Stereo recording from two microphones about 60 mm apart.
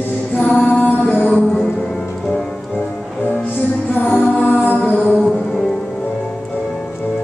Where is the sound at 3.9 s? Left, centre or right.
Left.